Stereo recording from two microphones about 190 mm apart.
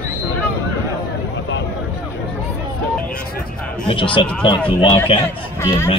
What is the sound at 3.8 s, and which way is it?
Speech, 25° left (ahead or behind).